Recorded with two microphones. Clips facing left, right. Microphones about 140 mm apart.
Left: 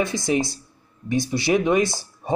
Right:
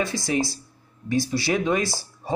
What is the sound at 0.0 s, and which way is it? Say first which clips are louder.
Speech: left 2 dB; 20° left (ahead or behind).